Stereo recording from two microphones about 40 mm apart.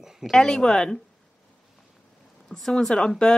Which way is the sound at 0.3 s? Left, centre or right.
Centre.